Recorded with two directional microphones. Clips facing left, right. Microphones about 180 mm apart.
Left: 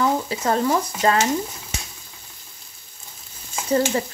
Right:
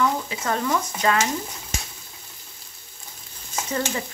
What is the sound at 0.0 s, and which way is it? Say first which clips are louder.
Speech: left 3 dB; 35° left (ahead or behind).